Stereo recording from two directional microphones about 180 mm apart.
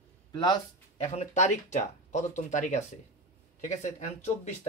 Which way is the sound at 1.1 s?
40° left (ahead or behind).